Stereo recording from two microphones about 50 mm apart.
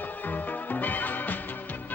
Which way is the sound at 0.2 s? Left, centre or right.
Left.